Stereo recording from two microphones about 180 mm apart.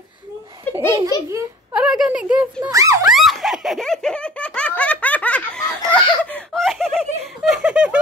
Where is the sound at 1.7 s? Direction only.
5° right (ahead or behind).